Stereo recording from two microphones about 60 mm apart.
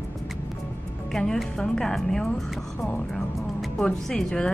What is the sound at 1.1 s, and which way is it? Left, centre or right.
A woman's voice, centre.